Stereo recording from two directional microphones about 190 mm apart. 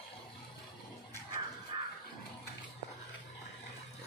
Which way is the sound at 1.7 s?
25° right (ahead or behind).